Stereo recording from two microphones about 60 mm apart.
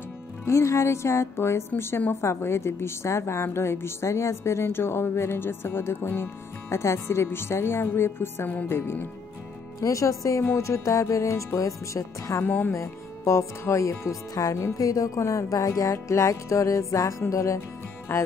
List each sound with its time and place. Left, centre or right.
0.5 s a woman's voice: left
9.8 s music: left
12.4 s speech: left
12.7 s music: left
14.8 s music: left
17.6 s speech: left